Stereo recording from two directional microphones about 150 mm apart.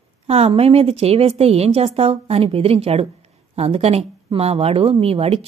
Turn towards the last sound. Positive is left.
turn(degrees=-40)  # may be behind; listen again after turning